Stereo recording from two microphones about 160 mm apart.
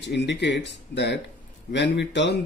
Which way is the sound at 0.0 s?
90° left.